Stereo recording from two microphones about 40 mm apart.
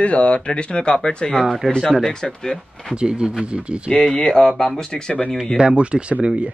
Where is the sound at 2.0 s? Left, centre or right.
Centre.